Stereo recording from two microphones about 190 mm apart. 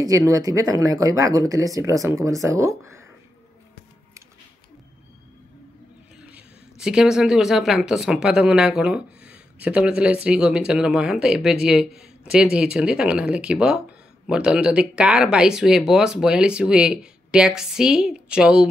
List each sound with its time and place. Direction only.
0.0 s speech: 15° right (ahead or behind)
6.3 s speech: 5° right (ahead or behind)